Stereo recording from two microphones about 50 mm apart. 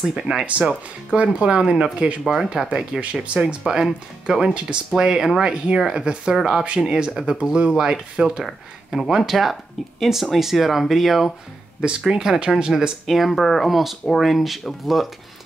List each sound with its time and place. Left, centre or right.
0.3 s speech: centre
1.1 s speech: right
2.2 s speech: centre
3.0 s speech: right; by 11.3 s centre
11.8 s speech: centre
13.0 s speech: centre